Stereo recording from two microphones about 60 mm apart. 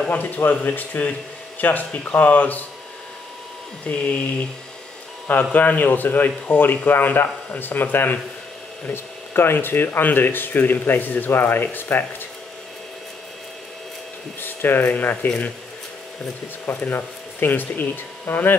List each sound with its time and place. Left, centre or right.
0.1 s speech: left
3.8 s speech: centre
5.3 s speech: left
14.4 s speech: left
15.2 s speech: centre
16.6 s speech: left